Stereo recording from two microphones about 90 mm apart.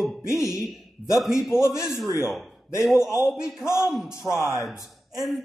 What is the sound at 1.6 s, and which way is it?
Speech, 35° left (ahead or behind).